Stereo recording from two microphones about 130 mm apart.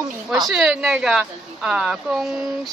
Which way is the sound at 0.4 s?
Centre (ahead or behind).